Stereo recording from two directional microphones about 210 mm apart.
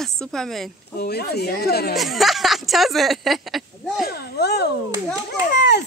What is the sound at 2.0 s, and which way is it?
Speech, centre (ahead or behind).